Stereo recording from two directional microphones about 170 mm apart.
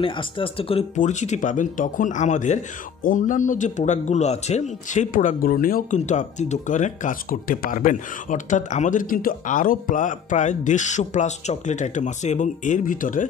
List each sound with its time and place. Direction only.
0.0 s speech: 30° left (ahead or behind)
0.9 s speech: 45° left (ahead or behind)